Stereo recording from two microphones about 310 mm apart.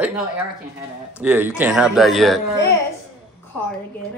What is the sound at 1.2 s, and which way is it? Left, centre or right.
Speech, centre.